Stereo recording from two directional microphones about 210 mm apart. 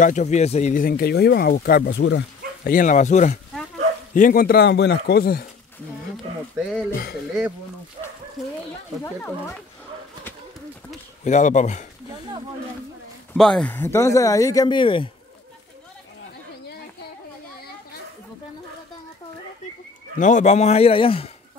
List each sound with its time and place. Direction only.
0.0 s speech: 35° left (ahead or behind); by 2.7 s 55° left (ahead or behind)
2.7 s a man's voice: 35° left (ahead or behind)
8.4 s speech: centre (ahead or behind)
11.2 s a man's voice: 35° left (ahead or behind)
13.3 s speech: 5° left (ahead or behind); by 15.0 s 25° left (ahead or behind)
20.2 s a man's voice: 35° left (ahead or behind)